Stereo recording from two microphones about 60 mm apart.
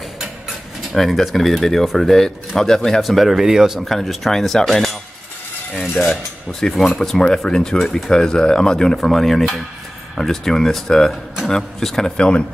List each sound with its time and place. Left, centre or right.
0.9 s speech: centre